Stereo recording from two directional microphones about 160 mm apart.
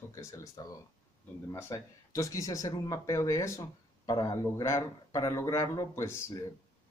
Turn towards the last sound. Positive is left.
turn(degrees=15)  # may be behind; listen again after turning